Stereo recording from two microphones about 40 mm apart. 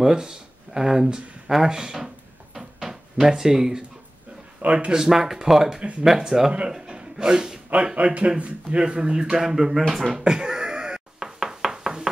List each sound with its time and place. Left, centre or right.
0.0 s a sound: centre
4.7 s speech: centre
5.8 s a man's voice: right
6.0 s a man's voice: centre
7.7 s a man's voice: right; by 10.1 s centre
10.1 s a sound: centre
11.1 s knock: centre